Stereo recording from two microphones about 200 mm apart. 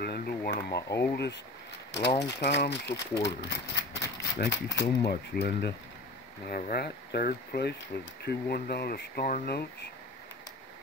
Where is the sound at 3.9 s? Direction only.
60° left (ahead or behind).